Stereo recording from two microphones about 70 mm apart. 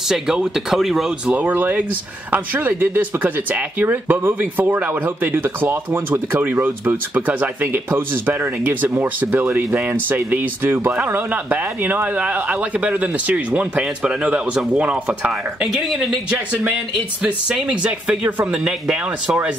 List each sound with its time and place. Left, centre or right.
0.1 s speech: centre
1.2 s speech: right
15.6 s speech: centre
17.2 s speech: centre